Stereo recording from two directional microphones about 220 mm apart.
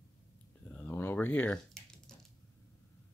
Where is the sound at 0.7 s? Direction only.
10° left (ahead or behind).